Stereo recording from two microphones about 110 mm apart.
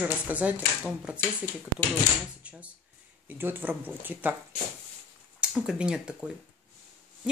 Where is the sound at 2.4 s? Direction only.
10° right (ahead or behind).